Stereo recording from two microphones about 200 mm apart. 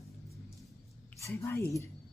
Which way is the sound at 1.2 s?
15° left (ahead or behind).